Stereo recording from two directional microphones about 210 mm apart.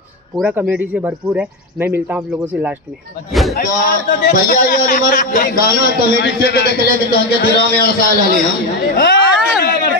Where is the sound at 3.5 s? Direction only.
40° left (ahead or behind).